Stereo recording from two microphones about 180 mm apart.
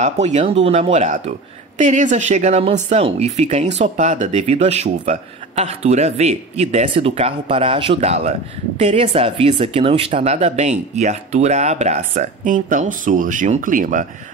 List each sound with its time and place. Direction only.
0.0 s speech: 40° right (ahead or behind)